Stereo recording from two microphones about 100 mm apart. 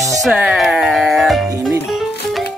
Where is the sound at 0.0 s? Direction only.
Centre (ahead or behind).